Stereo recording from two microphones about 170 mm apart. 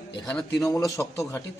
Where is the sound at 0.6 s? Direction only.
20° left (ahead or behind).